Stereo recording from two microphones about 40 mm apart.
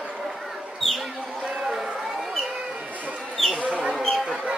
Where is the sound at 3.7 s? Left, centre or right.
Right.